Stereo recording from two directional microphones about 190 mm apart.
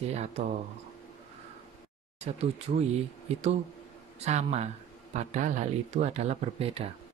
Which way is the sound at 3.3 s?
35° right (ahead or behind).